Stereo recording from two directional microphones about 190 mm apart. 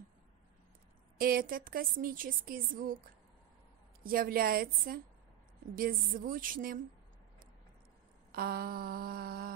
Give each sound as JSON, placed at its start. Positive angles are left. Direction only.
{"t": 1.1, "sound": "a woman's voice", "side_deg": -50}
{"t": 4.0, "sound": "a woman's voice", "side_deg": -50}
{"t": 8.3, "sound": "a woman's voice", "side_deg": -50}